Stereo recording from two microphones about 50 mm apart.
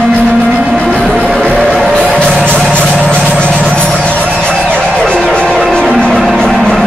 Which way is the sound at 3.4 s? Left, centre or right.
Centre.